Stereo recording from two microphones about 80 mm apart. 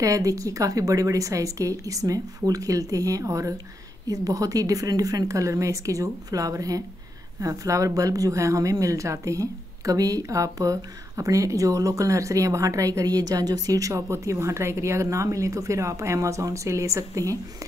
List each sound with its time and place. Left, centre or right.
0.0 s a woman's voice: right